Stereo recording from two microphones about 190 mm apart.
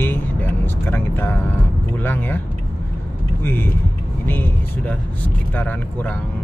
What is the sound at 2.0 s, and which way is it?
Speech, 10° left (ahead or behind).